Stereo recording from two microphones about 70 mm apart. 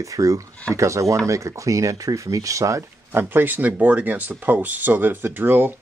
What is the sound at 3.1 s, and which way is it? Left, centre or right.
Speech, right.